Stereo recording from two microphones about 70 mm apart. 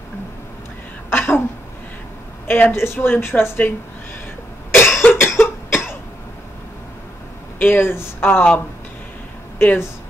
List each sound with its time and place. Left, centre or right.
1.1 s a sound: left
2.7 s speech: left
4.6 s cough: left
7.5 s speech: left